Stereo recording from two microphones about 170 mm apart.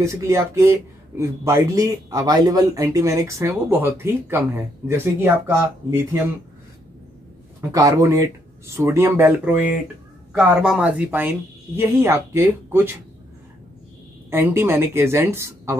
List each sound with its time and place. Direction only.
0.0 s speech: 20° right (ahead or behind)
7.7 s speech: 20° right (ahead or behind)
14.3 s speech: 15° right (ahead or behind)